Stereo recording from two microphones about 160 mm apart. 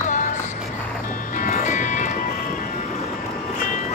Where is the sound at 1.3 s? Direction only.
55° left (ahead or behind).